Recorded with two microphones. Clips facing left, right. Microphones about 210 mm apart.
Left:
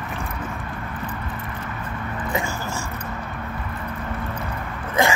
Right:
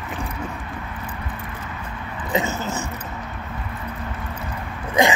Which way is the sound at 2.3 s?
20° right (ahead or behind).